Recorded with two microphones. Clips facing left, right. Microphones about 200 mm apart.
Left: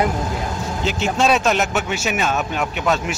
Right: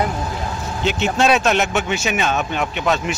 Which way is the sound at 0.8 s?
Centre (ahead or behind).